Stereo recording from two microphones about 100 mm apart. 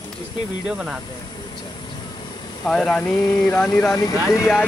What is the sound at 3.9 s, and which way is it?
Speech, 35° left (ahead or behind).